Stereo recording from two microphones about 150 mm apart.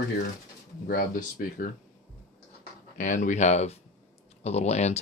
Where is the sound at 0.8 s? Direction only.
70° left (ahead or behind).